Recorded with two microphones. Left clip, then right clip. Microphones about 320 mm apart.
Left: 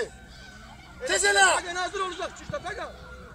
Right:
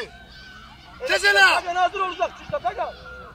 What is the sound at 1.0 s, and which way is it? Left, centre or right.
Speech, left.